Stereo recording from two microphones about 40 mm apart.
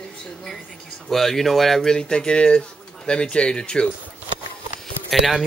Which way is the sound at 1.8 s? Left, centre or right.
Centre.